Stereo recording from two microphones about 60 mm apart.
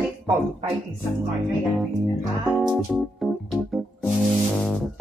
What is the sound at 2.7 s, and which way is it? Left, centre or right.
Keyboard, centre.